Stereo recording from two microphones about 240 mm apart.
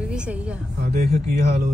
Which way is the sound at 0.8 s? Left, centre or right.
Right.